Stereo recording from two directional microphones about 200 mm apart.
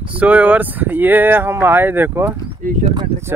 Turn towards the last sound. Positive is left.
turn(degrees=-15)  # may be behind; listen again after turning